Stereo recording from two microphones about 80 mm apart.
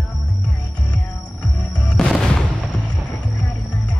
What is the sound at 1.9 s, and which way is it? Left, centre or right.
Music, centre.